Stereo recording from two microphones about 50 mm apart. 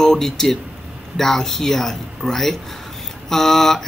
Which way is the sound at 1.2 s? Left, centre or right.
Centre.